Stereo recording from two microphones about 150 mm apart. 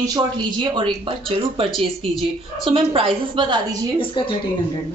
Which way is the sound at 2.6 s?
40° right (ahead or behind).